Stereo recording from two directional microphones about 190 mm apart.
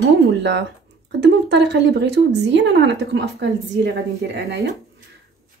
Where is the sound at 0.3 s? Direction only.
65° right (ahead or behind).